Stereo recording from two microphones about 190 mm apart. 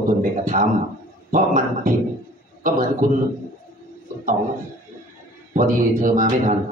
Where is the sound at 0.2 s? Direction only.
45° right (ahead or behind).